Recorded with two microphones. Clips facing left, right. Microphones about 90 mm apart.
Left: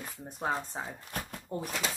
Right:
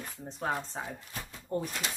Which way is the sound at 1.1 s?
55° left (ahead or behind).